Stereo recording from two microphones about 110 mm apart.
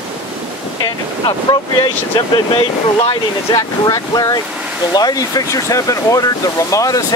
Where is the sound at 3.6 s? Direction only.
35° left (ahead or behind).